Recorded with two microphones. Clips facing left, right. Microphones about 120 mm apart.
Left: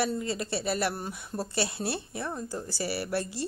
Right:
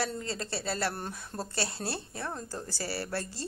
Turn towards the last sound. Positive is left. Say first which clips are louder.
# left 4 dB
turn(degrees=15)  # may be behind; listen again after turning